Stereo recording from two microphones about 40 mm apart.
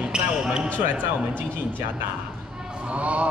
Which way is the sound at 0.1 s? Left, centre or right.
Centre.